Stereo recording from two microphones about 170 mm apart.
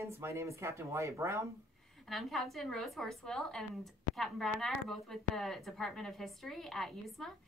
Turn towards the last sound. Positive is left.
turn(degrees=0)  # may be behind; listen again after turning